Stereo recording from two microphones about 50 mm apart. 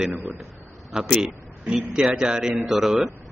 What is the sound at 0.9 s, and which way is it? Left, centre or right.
A man's voice, centre.